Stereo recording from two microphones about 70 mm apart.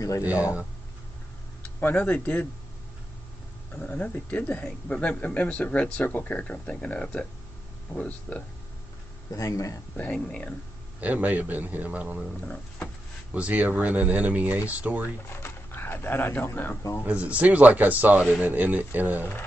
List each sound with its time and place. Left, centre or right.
1.6 s speech: left
3.7 s speech: left
9.3 s speech: left
10.1 s speech: centre
11.0 s speech: right
12.4 s speech: centre
13.3 s speech: centre
15.2 s speech: left
17.0 s speech: centre